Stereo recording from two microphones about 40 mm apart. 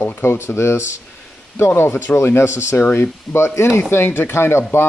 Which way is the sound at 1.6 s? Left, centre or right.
Left.